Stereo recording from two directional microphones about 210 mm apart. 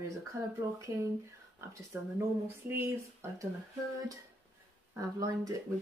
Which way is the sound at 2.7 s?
10° right (ahead or behind).